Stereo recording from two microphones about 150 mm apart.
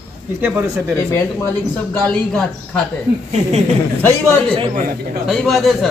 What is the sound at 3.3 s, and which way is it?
Speech, 45° right (ahead or behind).